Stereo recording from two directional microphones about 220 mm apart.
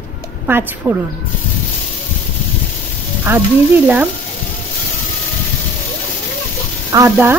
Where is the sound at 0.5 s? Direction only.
10° right (ahead or behind).